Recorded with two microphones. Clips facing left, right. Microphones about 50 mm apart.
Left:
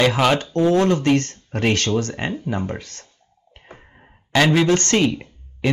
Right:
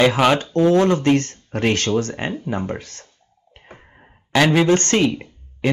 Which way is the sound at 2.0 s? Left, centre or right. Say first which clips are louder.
Even; centre.